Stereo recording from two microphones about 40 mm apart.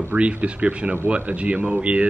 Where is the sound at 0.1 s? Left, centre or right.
Right.